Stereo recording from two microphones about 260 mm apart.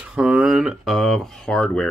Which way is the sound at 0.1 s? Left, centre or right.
Centre.